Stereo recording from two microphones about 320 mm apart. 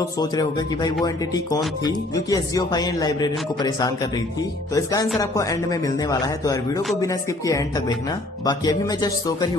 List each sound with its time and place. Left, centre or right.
0.0 s speech: centre